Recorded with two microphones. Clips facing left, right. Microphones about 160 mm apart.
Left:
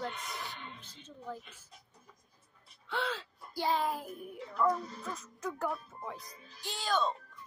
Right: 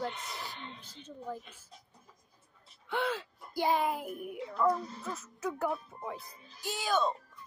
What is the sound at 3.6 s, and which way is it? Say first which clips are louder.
Music: right 2 dB; 10° right (ahead or behind).